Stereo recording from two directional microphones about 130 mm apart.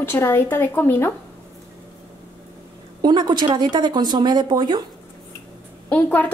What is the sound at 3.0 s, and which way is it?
Speech, 35° right (ahead or behind).